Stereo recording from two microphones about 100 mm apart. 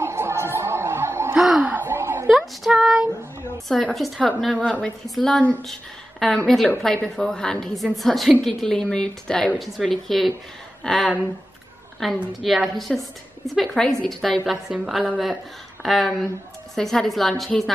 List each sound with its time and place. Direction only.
0.0 s chatter: 25° right (ahead or behind)
1.3 s gasp: 10° right (ahead or behind)
2.2 s a sound: centre (ahead or behind)
3.6 s a woman's voice: centre (ahead or behind)
4.6 s a woman's voice: 10° left (ahead or behind)